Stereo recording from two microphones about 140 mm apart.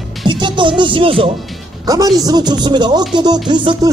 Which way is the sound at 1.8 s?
25° right (ahead or behind).